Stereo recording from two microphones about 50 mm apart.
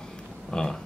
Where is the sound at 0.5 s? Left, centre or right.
Centre.